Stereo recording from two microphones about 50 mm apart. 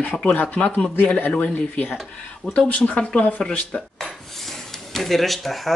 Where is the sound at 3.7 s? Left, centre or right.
Centre.